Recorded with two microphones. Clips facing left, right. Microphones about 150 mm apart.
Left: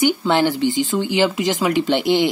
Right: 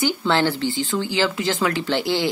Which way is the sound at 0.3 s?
15° left (ahead or behind).